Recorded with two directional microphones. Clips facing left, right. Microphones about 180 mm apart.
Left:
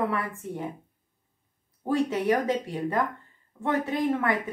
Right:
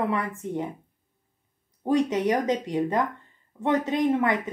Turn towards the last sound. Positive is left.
turn(degrees=-20)  # may be behind; listen again after turning